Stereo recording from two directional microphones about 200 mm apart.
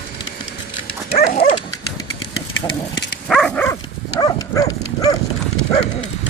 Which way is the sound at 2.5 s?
65° left (ahead or behind).